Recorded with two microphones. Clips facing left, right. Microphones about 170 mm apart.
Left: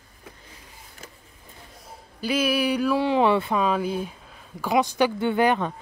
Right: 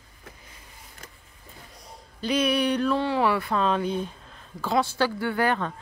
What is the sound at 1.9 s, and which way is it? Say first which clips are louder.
Speech: even; 5° left (ahead or behind).